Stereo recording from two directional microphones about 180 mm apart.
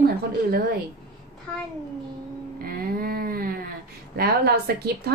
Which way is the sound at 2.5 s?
55° right (ahead or behind).